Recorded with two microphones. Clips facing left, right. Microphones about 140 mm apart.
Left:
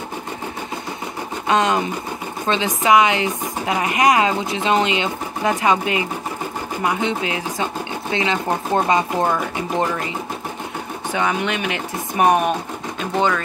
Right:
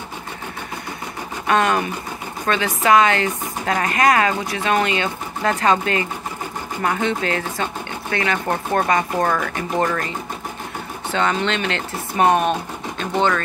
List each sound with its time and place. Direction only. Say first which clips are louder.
1.5 s speech: even; 20° left (ahead or behind)